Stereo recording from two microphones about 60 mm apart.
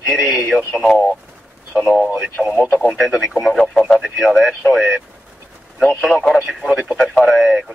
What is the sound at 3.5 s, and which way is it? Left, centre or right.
Speech, centre.